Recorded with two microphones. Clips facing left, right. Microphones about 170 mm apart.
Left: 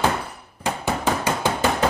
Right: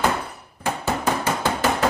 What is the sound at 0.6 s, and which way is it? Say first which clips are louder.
Hammer: even; 15° left (ahead or behind).